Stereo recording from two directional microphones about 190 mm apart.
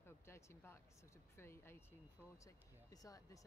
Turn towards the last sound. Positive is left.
turn(degrees=20)  # may be behind; listen again after turning